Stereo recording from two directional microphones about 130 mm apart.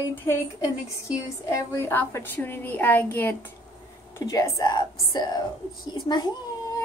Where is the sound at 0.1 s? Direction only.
15° left (ahead or behind).